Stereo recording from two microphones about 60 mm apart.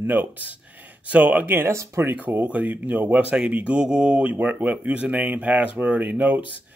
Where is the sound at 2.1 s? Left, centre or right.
Right.